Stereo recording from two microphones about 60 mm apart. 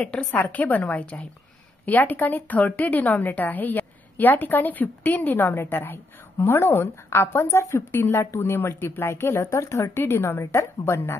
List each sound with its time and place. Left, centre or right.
0.0 s a woman's voice: left
7.4 s speech: left
7.7 s speech: left